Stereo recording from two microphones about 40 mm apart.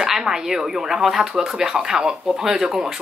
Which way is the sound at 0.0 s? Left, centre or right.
Centre.